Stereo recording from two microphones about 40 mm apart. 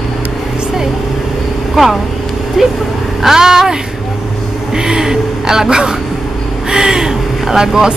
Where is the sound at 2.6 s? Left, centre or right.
Centre.